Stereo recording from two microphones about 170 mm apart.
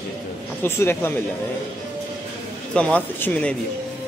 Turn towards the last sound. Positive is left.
turn(degrees=10)  # may be behind; listen again after turning